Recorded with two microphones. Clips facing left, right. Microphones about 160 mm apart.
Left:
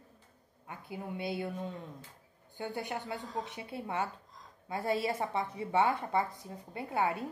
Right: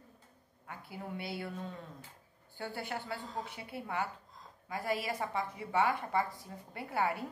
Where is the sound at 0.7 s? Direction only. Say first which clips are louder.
Left 2 dB; 20° left (ahead or behind).